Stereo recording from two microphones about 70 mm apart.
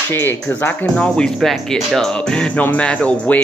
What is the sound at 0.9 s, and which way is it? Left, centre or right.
Speech, centre.